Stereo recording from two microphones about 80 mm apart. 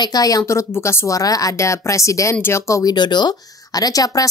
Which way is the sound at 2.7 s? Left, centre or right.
Left.